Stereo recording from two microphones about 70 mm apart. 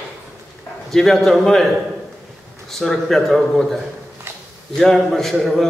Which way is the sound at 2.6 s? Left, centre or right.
Centre.